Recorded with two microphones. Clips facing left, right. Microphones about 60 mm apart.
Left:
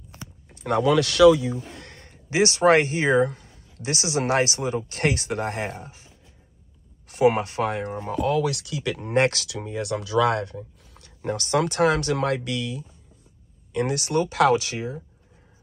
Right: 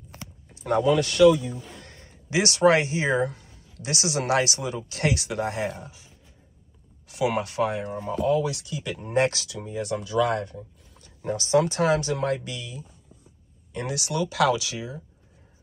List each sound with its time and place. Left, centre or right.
0.8 s speech: left
1.6 s a sound: left
2.2 s speech: left
7.1 s speech: left
13.7 s speech: left